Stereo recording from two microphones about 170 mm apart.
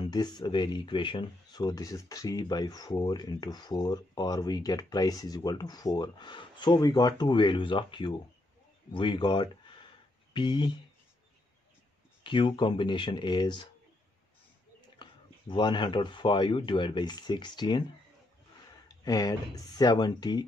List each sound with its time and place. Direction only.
0.0 s speech: 25° left (ahead or behind)
12.2 s speech: 30° left (ahead or behind)
15.0 s speech: 30° left (ahead or behind)
19.0 s speech: 20° left (ahead or behind)